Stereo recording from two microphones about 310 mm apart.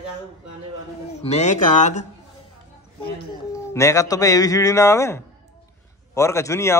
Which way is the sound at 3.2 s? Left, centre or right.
Centre.